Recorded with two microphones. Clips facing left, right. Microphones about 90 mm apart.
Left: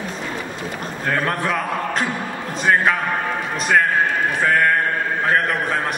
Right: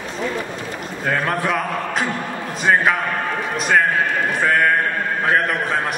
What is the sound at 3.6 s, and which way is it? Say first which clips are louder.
Music: even; centre (ahead or behind).